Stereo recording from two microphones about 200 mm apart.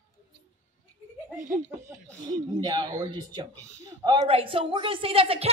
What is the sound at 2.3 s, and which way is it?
A woman's voice, 20° right (ahead or behind).